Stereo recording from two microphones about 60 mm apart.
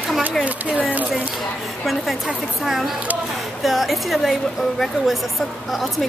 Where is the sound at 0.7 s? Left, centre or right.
Right.